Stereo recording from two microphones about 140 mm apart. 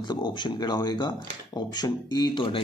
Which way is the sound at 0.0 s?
30° left (ahead or behind).